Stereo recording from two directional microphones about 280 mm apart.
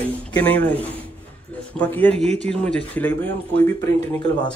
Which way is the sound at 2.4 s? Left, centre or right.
Centre.